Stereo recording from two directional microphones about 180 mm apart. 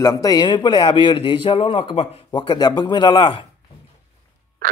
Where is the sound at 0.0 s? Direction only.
20° left (ahead or behind).